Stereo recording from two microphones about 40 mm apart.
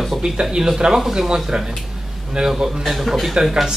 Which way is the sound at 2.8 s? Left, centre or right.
Centre.